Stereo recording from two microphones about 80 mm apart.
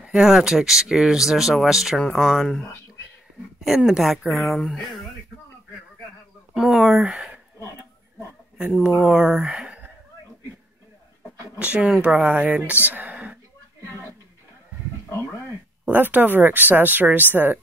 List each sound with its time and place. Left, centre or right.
0.0 s speech: centre
3.6 s speech: centre
6.5 s speech: centre
8.9 s speech: centre
11.5 s speech: centre
15.9 s speech: right